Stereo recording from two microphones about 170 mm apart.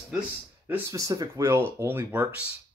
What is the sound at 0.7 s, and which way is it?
Speech, 20° right (ahead or behind).